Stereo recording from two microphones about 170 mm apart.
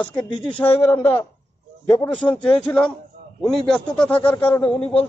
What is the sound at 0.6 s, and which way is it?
A man's voice, 15° left (ahead or behind).